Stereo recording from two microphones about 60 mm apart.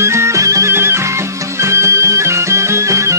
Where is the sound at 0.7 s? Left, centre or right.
Right.